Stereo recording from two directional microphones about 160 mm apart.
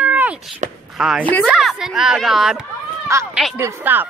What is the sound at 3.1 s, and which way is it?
Speech, 20° right (ahead or behind).